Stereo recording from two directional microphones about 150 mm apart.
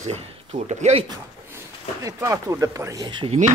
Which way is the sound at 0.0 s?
45° right (ahead or behind).